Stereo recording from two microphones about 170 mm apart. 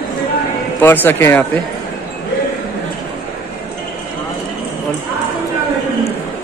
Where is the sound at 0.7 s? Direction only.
10° left (ahead or behind).